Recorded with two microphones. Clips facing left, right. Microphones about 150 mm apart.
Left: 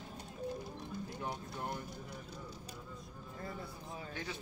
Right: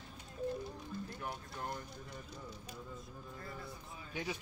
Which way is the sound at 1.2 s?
10° left (ahead or behind).